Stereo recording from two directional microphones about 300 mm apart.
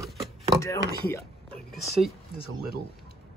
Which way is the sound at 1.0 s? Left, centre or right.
Centre.